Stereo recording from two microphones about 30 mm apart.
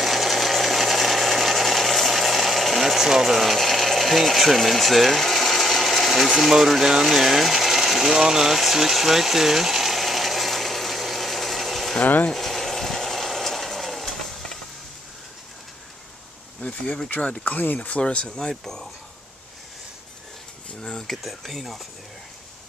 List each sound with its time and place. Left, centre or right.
0.0 s a sound: centre
3.0 s speech: centre
8.5 s a sound: centre
12.0 s speech: left
12.3 s a sound: centre
16.6 s insect: left
17.5 s speech: left
17.8 s speech: left
18.5 s speech: centre
21.4 s speech: centre